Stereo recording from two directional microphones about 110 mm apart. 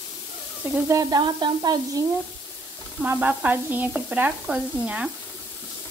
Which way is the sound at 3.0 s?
15° right (ahead or behind).